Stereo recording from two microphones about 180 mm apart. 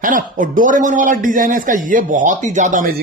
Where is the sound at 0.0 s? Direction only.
50° right (ahead or behind).